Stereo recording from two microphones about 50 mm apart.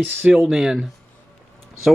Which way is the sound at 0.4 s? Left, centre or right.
Centre.